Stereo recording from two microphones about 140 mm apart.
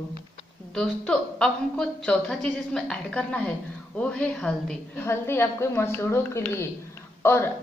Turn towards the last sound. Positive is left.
turn(degrees=15)  # may be behind; listen again after turning